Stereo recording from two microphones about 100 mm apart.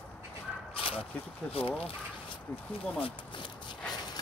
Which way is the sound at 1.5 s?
70° left (ahead or behind).